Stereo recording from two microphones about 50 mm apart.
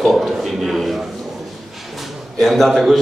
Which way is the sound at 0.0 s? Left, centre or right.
Centre.